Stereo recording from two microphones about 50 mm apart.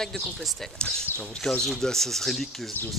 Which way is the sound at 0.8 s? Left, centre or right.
Centre.